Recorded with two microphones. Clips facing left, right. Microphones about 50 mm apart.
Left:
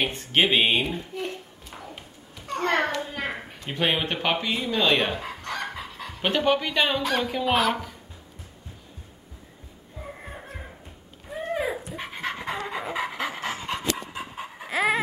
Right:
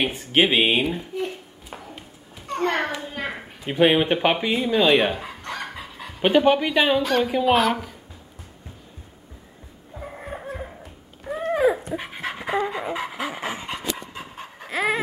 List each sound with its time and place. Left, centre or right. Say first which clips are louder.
0.0 s speech: right 3 dB; centre
2.3 s a sound: right 1 dB; centre
3.6 s speech: right 7 dB; centre
12.0 s dog: even; centre
13.4 s dog: right 1 dB; centre
13.7 s dog: left 1 dB; centre